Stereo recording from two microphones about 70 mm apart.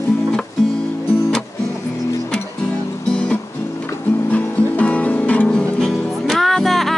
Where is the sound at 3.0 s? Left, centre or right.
Centre.